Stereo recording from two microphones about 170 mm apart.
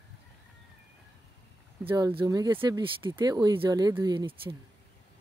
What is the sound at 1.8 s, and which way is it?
Speech, 30° right (ahead or behind).